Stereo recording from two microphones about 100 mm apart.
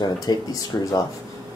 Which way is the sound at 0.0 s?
40° left (ahead or behind).